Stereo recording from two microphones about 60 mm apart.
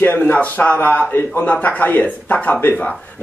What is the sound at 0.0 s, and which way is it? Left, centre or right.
A man's voice, left.